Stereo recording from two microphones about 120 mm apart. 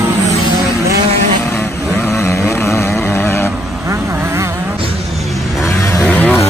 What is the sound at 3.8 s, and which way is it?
Vehicle, 20° right (ahead or behind).